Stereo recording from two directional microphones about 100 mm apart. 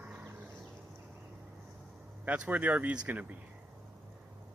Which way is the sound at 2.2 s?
15° right (ahead or behind).